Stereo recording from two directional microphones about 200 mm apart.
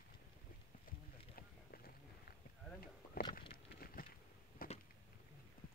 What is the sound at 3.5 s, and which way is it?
Patter, 50° left (ahead or behind).